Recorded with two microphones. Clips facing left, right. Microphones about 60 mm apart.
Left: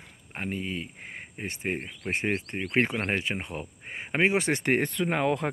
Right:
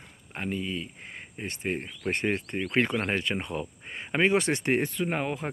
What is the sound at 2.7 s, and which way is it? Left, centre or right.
Speech, left.